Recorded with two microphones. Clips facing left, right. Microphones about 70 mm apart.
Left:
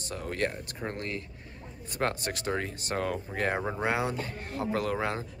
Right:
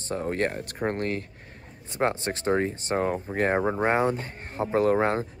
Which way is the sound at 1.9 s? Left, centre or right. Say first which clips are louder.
Right 5 dB; right.